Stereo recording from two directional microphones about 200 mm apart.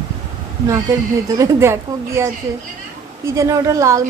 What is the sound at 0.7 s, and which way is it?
A woman's voice, 15° right (ahead or behind).